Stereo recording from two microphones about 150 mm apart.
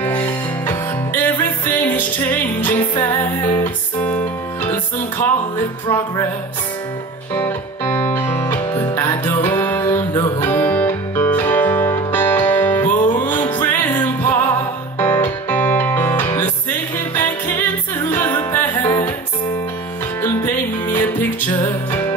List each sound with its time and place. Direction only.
0.0 s music: 10° left (ahead or behind)
7.3 s music: 15° left (ahead or behind)
18.8 s music: 25° left (ahead or behind)
20.4 s music: 10° left (ahead or behind)